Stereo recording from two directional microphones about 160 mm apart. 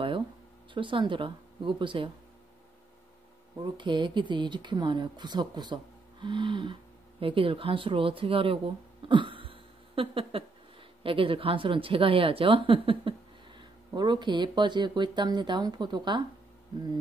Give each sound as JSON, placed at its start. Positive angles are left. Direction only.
{"t": 0.7, "sound": "speech", "side_deg": -30}
{"t": 3.7, "sound": "speech", "side_deg": -30}
{"t": 9.0, "sound": "a sound", "side_deg": -30}
{"t": 11.0, "sound": "speech", "side_deg": -35}